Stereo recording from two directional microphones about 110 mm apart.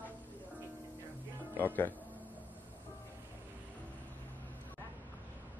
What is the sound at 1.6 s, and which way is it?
Speech, 15° left (ahead or behind).